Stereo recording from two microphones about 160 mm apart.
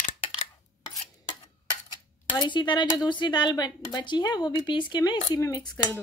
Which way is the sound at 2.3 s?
30° left (ahead or behind).